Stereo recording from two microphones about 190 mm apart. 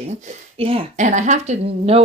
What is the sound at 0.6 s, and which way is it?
Speech, 30° right (ahead or behind).